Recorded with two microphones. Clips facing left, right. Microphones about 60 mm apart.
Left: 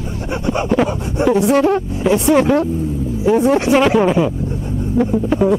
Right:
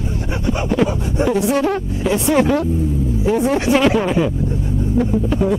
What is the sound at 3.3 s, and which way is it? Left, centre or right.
Speech, left.